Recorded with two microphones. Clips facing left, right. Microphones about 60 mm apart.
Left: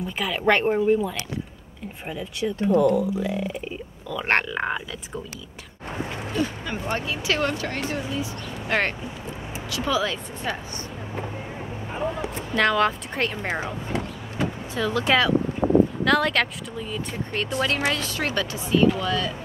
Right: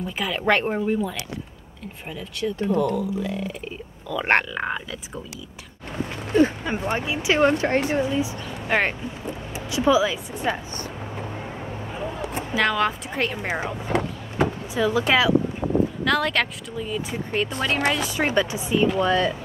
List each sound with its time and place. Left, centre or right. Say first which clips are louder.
0.0 s speech: left 1 dB; centre
2.7 s speech: left 5 dB; left
3.0 s speech: left 1 dB; centre
4.3 s speech: right 1 dB; centre
6.3 s speech: right 8 dB; right
7.0 s speech: right 6 dB; centre
8.6 s speech: right 2 dB; centre
12.5 s speech: left 1 dB; centre
13.9 s a sound: right 6 dB; right
14.7 s speech: even; centre
18.0 s speech: right 4 dB; centre
18.9 s speech: right 5 dB; right